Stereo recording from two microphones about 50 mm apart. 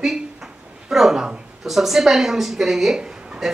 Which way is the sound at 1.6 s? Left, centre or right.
Centre.